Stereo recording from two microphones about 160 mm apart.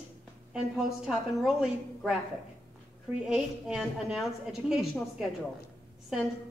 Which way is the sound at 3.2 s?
5° right (ahead or behind).